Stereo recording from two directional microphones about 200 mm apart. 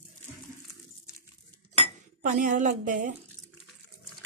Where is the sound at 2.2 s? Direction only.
40° right (ahead or behind).